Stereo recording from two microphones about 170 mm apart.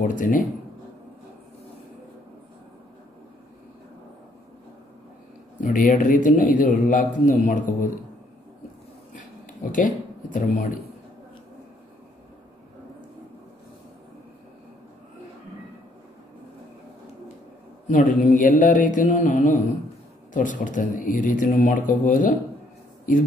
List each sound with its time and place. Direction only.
0.0 s a man's voice: 50° left (ahead or behind)
5.6 s a man's voice: 50° left (ahead or behind)
9.1 s a sound: 50° left (ahead or behind)
17.8 s a man's voice: 50° left (ahead or behind)